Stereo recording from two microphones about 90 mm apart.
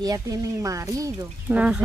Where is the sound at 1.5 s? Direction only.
15° right (ahead or behind).